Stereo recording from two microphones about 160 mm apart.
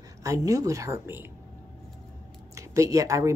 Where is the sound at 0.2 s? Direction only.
20° right (ahead or behind).